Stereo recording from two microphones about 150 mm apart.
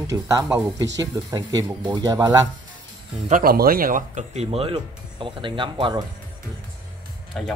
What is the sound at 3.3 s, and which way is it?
Speech, 75° right (ahead or behind).